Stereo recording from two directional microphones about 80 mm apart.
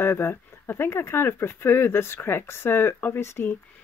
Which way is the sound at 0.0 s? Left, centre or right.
Left.